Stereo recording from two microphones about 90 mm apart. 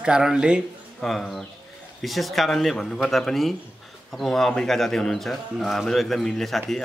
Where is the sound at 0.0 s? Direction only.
10° right (ahead or behind).